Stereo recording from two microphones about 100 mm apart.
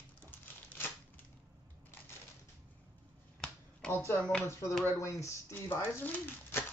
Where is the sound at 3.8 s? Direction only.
10° left (ahead or behind).